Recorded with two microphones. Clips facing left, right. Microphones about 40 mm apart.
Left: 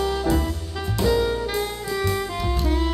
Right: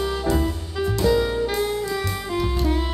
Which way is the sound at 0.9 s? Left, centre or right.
Centre.